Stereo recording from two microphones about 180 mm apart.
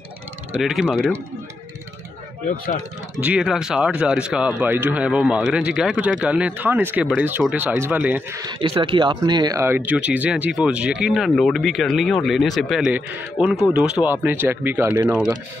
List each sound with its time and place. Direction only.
0.6 s speech: centre (ahead or behind)
2.4 s speech: 50° left (ahead or behind)
3.2 s speech: 5° right (ahead or behind)